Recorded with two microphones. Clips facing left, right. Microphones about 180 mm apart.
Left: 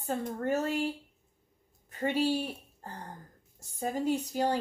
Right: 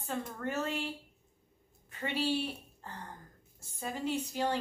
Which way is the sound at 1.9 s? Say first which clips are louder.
Left 4 dB; 40° left (ahead or behind).